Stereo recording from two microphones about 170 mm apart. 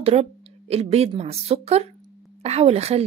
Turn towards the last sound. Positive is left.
turn(degrees=-40)  # may be behind; listen again after turning